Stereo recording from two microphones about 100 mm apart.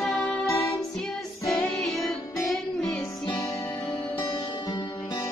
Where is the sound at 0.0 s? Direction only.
Centre (ahead or behind).